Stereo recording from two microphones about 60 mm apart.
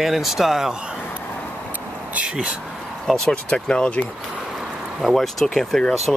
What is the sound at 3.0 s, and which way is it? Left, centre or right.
Speech, centre.